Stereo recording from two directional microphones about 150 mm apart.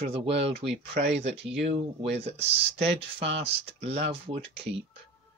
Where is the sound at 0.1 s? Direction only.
40° right (ahead or behind).